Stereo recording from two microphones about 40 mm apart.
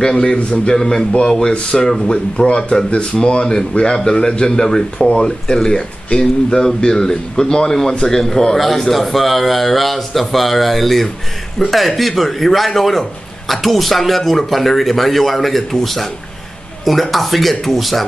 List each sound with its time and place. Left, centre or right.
0.1 s a man's voice: centre
1.5 s a man's voice: left; by 18.0 s centre